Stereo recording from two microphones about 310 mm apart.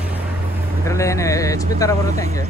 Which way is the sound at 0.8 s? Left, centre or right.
Centre.